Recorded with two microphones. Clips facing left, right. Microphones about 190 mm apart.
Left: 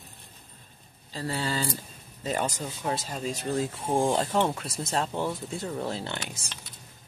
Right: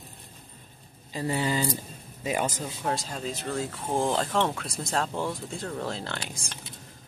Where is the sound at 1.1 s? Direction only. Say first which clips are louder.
Right 3 dB; 15° right (ahead or behind).